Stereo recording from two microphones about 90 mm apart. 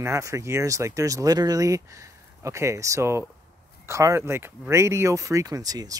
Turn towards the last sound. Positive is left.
turn(degrees=-45)  # may be behind; listen again after turning